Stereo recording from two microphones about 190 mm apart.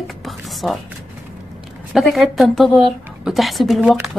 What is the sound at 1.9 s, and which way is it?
A woman's voice, centre (ahead or behind).